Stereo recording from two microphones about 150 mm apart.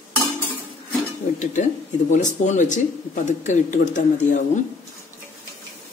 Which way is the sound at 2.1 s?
55° left (ahead or behind).